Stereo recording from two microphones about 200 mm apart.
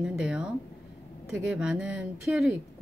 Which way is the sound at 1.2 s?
55° left (ahead or behind).